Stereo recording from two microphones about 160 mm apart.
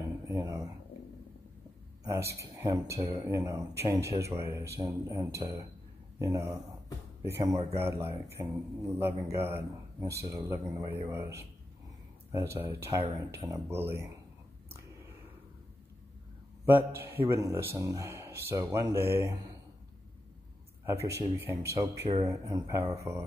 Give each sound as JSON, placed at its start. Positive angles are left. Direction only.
{"t": 0.3, "sound": "speech", "side_deg": -20}
{"t": 2.0, "sound": "speech", "side_deg": -15}
{"t": 16.6, "sound": "speech", "side_deg": -15}
{"t": 20.8, "sound": "speech", "side_deg": -15}